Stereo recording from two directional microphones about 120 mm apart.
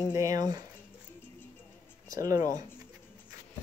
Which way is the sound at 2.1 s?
30° right (ahead or behind).